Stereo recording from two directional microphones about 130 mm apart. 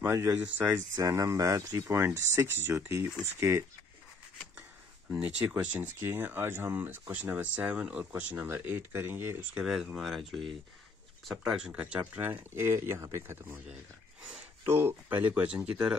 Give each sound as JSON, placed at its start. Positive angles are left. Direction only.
{"t": 0.0, "sound": "speech", "side_deg": -20}
{"t": 0.9, "sound": "speech", "side_deg": -25}
{"t": 5.1, "sound": "speech", "side_deg": -10}
{"t": 14.6, "sound": "speech", "side_deg": -20}